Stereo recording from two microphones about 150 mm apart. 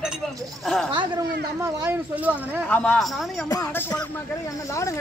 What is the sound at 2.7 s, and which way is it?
Speech, 10° left (ahead or behind).